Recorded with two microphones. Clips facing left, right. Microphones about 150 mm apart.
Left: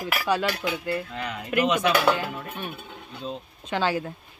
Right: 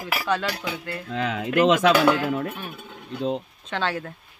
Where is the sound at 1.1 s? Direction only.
90° right.